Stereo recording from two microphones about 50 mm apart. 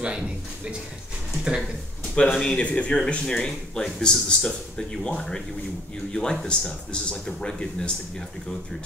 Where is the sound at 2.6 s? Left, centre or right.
Left.